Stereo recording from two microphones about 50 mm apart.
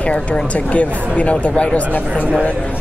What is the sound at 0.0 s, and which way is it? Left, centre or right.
A man's voice, left.